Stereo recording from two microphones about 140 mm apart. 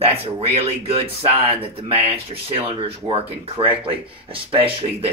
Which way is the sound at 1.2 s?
40° right (ahead or behind).